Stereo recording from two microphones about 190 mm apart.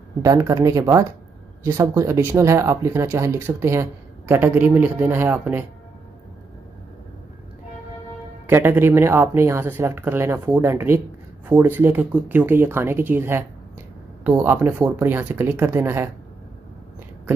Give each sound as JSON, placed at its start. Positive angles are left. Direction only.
{"t": 0.2, "sound": "speech", "side_deg": -15}
{"t": 8.5, "sound": "speech", "side_deg": -10}